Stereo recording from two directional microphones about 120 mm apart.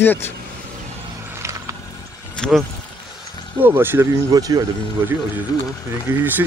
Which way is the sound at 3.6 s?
15° right (ahead or behind).